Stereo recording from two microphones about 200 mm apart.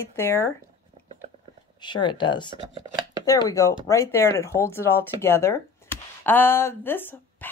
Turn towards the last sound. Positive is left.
turn(degrees=10)  # may be behind; listen again after turning